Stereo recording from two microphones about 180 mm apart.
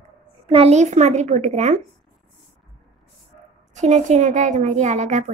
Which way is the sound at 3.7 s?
40° right (ahead or behind).